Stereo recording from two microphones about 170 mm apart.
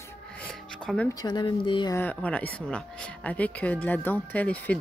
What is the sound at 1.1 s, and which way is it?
Speech, 25° left (ahead or behind).